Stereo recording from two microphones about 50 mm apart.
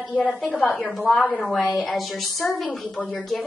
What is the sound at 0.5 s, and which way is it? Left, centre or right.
Speech, centre.